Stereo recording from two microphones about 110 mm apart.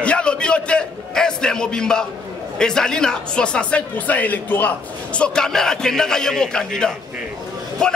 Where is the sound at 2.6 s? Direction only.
5° left (ahead or behind).